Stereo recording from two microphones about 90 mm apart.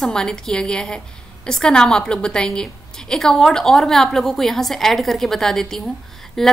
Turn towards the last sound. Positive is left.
turn(degrees=5)  # may be behind; listen again after turning